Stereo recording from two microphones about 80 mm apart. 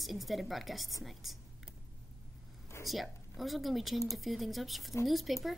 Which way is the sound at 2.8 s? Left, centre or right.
Centre.